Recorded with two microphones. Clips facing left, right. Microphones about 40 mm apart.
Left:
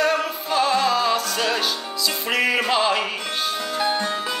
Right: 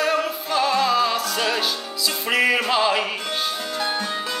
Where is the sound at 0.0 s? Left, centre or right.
Centre.